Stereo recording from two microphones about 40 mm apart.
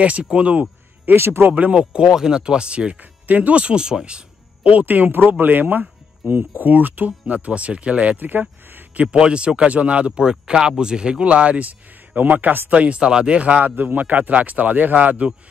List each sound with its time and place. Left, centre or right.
0.0 s speech: right
1.1 s speech: right
1.5 s speech: right
2.0 s speech: centre
3.0 s speech: right
4.6 s speech: right
7.3 s speech: right
8.2 s speech: right
8.9 s speech: right
12.6 s speech: right
13.7 s speech: right